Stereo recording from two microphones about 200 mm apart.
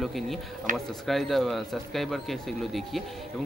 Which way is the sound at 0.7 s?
40° right (ahead or behind).